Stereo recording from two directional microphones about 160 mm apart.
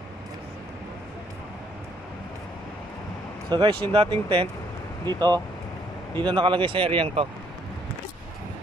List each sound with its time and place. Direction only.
3.4 s speech: 25° right (ahead or behind)